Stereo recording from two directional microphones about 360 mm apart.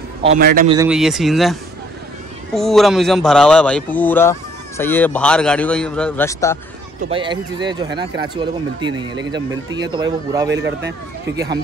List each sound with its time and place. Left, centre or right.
0.2 s speech: right
0.7 s a man's voice: centre
7.0 s speech: centre
10.5 s speech: right
11.3 s speech: centre